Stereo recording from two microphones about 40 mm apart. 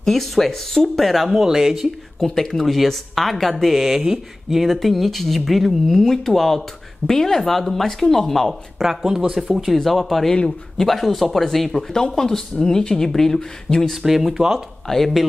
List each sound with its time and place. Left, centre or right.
0.0 s speech: centre
2.1 s speech: centre
3.7 s speech: centre
8.8 s speech: centre
9.8 s speech: centre
10.3 s speech: centre
10.9 s speech: centre
14.0 s speech: centre
14.9 s speech: centre